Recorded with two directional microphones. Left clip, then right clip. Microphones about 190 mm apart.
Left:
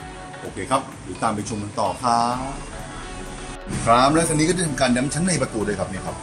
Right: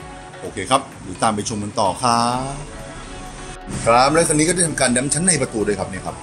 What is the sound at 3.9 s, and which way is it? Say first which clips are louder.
A man's voice: right 3 dB; 30° right (ahead or behind).